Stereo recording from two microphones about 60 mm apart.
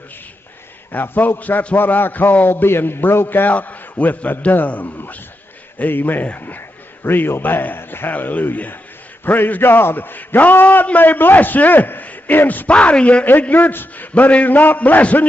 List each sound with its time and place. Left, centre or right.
0.9 s a man's voice: left
1.8 s a man's voice: left
12.6 s a man's voice: centre